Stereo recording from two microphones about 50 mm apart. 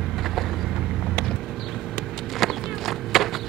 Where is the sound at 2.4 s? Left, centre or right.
Centre.